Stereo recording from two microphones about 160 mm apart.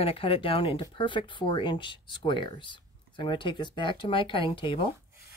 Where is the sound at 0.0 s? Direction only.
35° left (ahead or behind).